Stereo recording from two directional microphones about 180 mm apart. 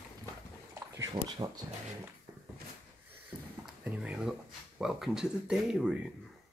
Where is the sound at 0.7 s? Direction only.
20° right (ahead or behind).